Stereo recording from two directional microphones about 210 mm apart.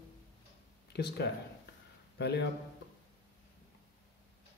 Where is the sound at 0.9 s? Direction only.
50° left (ahead or behind).